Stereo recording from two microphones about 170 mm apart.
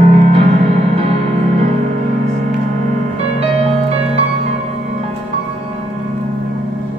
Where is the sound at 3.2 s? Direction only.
40° right (ahead or behind).